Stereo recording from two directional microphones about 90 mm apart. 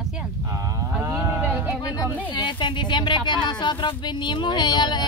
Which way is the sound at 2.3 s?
60° left (ahead or behind).